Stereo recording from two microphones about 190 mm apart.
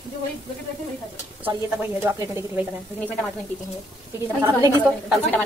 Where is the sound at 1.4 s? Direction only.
10° right (ahead or behind).